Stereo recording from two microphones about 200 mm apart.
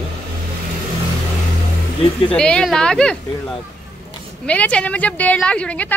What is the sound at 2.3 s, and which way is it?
A woman's voice, 5° left (ahead or behind).